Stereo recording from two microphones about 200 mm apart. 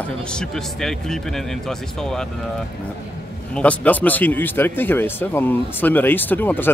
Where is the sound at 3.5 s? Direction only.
5° left (ahead or behind).